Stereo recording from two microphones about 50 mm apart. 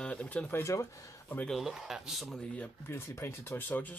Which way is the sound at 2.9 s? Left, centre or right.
Left.